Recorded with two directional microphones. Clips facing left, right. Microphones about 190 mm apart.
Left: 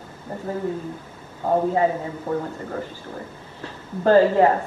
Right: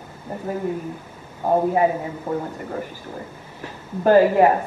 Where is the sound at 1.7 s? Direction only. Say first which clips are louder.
Right 1 dB; 15° right (ahead or behind).